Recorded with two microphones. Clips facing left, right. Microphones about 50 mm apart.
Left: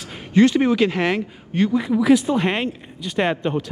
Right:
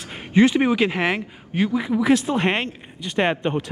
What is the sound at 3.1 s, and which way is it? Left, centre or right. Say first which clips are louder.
Speech: even; centre.